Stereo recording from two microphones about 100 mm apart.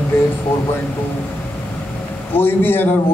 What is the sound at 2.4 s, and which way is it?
Speech, 20° left (ahead or behind).